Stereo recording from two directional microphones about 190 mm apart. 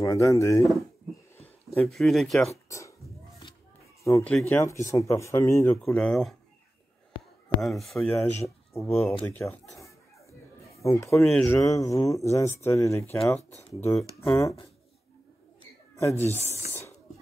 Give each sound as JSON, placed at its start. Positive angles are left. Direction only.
{"t": 0.0, "sound": "speech", "side_deg": 15}
{"t": 1.9, "sound": "speech", "side_deg": 0}
{"t": 4.0, "sound": "speech", "side_deg": 10}
{"t": 5.8, "sound": "speech", "side_deg": 0}
{"t": 7.4, "sound": "speech", "side_deg": 0}
{"t": 8.7, "sound": "speech", "side_deg": 15}
{"t": 10.8, "sound": "speech", "side_deg": 15}
{"t": 16.0, "sound": "speech", "side_deg": 15}
{"t": 16.3, "sound": "speech", "side_deg": 35}